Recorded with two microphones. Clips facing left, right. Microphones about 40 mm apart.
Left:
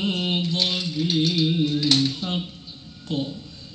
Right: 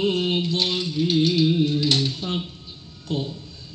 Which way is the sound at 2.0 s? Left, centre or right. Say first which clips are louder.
Left 1 dB; left.